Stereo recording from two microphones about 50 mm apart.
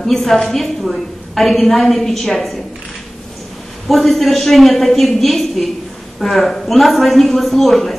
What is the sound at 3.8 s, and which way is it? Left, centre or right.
A man's voice, centre.